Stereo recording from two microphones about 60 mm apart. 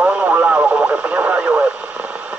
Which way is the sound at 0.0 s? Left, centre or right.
Right.